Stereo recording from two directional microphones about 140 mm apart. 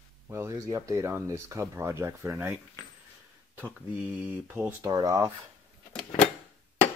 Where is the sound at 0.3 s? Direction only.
20° right (ahead or behind).